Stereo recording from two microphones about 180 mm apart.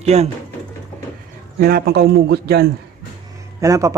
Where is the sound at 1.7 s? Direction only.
60° right (ahead or behind).